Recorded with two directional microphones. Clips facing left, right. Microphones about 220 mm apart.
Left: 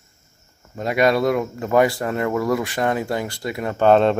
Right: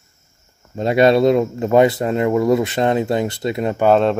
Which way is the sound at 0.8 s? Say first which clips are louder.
Right 5 dB; 25° right (ahead or behind).